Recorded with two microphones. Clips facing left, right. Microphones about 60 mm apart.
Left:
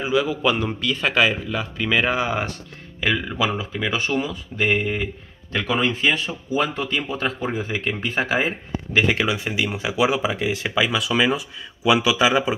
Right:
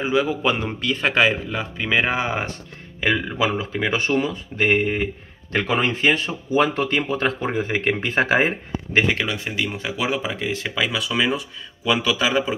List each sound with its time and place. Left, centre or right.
0.0 s a man's voice: right
9.1 s speech: centre